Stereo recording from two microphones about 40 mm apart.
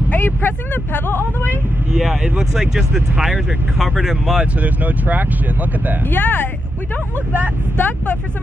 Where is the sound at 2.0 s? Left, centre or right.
Centre.